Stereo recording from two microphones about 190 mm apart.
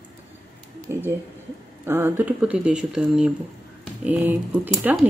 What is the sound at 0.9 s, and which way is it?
Speech, 15° right (ahead or behind).